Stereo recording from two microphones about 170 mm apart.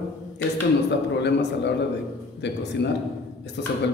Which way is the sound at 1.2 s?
85° left.